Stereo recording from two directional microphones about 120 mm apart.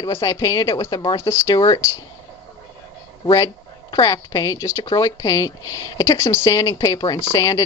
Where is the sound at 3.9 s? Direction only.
30° left (ahead or behind).